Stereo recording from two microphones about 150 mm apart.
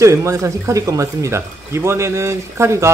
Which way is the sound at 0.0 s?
20° right (ahead or behind).